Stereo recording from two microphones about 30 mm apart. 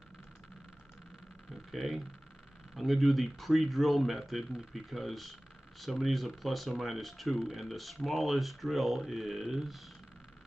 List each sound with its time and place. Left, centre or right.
1.7 s speech: centre
7.3 s speech: centre
7.7 s speech: centre